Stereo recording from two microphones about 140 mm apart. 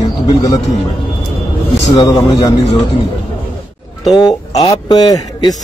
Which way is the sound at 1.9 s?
25° left (ahead or behind).